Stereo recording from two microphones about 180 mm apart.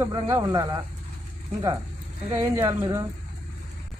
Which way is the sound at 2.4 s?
15° right (ahead or behind).